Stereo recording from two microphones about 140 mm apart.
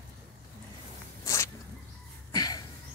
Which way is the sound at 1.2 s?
20° left (ahead or behind).